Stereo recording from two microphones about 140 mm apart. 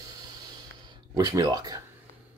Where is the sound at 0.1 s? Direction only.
30° right (ahead or behind).